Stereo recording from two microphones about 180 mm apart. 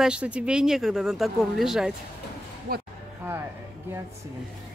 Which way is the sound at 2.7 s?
55° right (ahead or behind).